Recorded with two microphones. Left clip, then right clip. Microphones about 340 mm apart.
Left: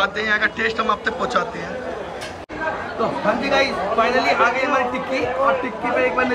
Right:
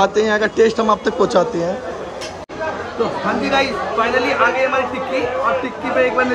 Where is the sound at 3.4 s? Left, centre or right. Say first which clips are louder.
Right 1 dB; centre.